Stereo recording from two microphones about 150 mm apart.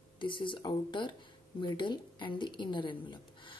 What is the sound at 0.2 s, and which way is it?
A woman's voice, 35° left (ahead or behind).